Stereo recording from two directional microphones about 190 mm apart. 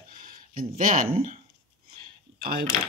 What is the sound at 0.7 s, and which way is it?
Speech, 45° right (ahead or behind).